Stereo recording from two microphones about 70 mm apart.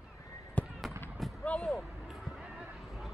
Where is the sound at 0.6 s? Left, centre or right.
Left.